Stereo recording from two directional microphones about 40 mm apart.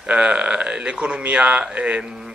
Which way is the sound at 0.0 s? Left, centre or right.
Right.